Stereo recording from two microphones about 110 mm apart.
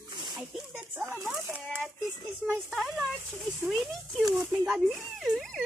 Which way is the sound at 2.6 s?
Centre (ahead or behind).